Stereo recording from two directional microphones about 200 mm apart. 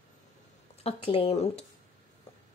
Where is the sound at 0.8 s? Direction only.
25° left (ahead or behind).